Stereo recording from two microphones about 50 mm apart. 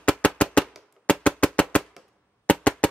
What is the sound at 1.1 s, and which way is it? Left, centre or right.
Music, left.